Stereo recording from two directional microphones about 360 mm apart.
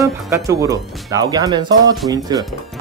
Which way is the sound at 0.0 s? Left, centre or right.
Centre.